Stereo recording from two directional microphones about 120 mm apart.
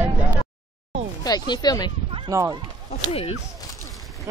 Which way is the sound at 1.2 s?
35° left (ahead or behind).